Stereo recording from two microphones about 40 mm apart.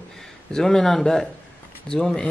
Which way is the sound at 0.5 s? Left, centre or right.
Centre.